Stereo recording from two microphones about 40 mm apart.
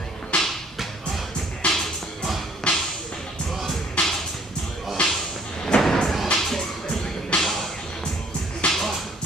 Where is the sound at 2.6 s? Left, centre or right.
Left.